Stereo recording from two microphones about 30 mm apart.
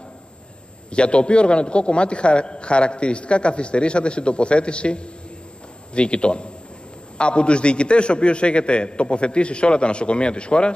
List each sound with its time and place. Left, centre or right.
0.9 s a man's voice: left